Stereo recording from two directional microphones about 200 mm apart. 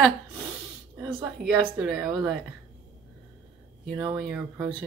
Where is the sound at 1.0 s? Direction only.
5° right (ahead or behind).